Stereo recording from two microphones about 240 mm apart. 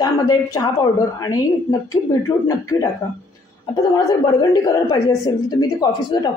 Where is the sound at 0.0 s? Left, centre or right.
Centre.